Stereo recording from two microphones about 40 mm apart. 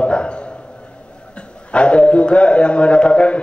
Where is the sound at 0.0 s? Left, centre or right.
Left.